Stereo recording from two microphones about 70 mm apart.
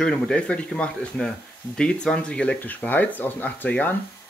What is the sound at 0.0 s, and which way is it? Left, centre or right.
Speech, centre.